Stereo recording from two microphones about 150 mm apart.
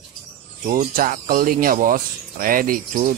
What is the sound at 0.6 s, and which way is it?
Speech, 65° right (ahead or behind).